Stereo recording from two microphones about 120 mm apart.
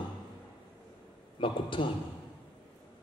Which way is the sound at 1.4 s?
45° left (ahead or behind).